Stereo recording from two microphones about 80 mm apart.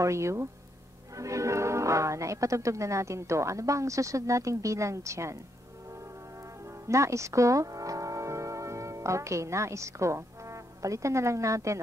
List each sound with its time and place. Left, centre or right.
0.0 s speech: right
6.9 s speech: right